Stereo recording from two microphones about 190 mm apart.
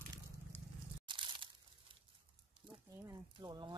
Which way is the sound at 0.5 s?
10° left (ahead or behind).